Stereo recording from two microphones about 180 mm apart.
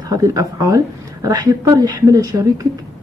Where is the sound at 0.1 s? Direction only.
20° right (ahead or behind).